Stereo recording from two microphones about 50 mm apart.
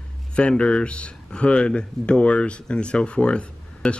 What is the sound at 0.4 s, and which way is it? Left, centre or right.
Speech, left.